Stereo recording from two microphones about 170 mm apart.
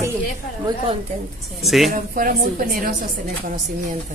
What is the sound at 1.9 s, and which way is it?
A woman's voice, 60° right (ahead or behind).